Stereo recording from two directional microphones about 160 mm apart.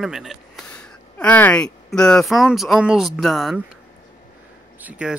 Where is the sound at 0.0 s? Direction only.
Centre (ahead or behind).